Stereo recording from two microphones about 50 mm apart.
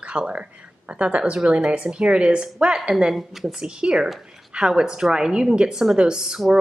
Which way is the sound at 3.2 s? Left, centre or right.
Centre.